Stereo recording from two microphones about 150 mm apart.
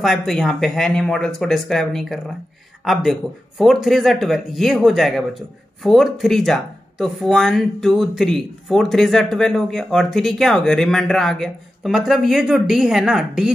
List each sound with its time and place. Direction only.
0.0 s speech: centre (ahead or behind)